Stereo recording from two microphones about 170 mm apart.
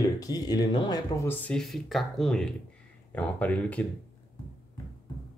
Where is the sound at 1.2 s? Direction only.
10° left (ahead or behind).